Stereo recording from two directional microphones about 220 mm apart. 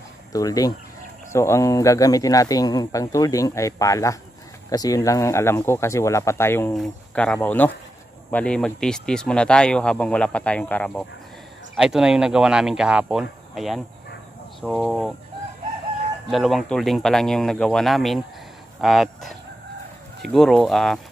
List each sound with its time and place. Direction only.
0.3 s speech: 15° left (ahead or behind); by 15.1 s centre (ahead or behind)
16.3 s speech: centre (ahead or behind)